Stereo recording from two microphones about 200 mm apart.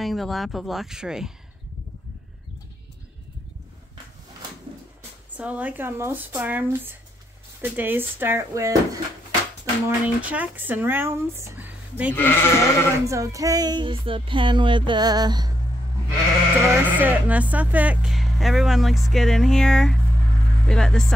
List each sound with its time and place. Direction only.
0.0 s speech: centre (ahead or behind)
5.4 s speech: 5° right (ahead or behind)
12.2 s speech: 10° left (ahead or behind)
13.0 s music: 15° right (ahead or behind)
16.7 s speech: 10° right (ahead or behind)